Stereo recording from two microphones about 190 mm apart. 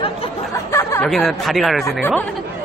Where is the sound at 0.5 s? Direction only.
15° left (ahead or behind).